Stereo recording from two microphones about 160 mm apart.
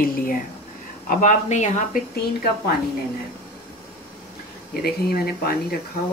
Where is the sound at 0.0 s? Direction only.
60° left (ahead or behind).